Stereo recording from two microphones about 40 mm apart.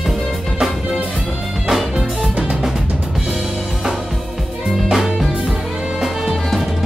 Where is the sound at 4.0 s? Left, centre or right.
Centre.